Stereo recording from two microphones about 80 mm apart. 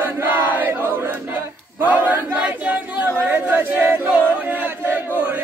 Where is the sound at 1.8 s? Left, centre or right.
Right.